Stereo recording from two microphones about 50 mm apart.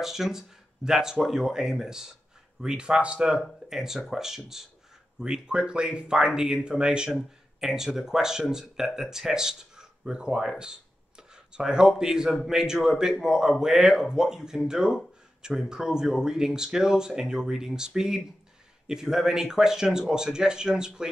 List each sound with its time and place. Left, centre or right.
0.0 s speech: centre
3.6 s speech: centre
7.1 s speech: centre
10.6 s a sound: centre
12.0 s speech: centre